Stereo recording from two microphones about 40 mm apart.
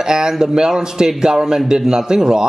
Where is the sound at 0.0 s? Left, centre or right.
Centre.